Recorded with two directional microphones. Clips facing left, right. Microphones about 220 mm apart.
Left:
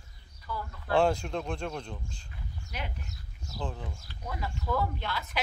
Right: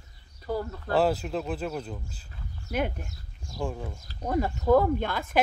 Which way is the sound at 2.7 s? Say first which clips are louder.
Right 12 dB; 50° right (ahead or behind).